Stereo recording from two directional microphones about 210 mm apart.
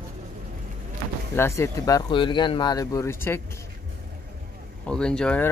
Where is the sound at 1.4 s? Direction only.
15° left (ahead or behind).